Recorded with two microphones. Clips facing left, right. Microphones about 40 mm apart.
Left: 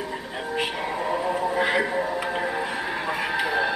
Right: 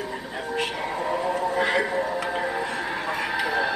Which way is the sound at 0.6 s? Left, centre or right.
Centre.